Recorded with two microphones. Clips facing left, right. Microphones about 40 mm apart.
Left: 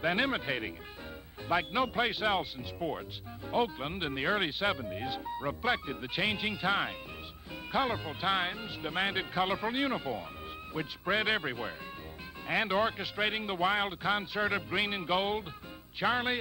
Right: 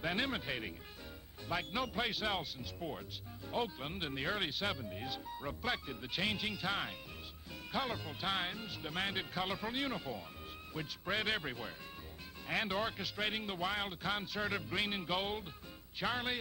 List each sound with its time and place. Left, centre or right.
0.0 s speech: left